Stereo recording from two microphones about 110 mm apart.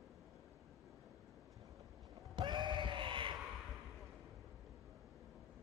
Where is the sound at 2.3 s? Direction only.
45° right (ahead or behind).